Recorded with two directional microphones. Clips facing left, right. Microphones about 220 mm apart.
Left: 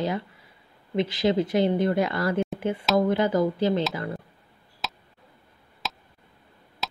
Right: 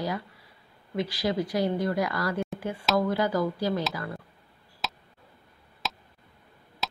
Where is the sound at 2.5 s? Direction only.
20° left (ahead or behind).